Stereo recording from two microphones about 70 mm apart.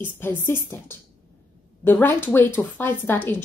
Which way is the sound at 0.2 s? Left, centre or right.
Left.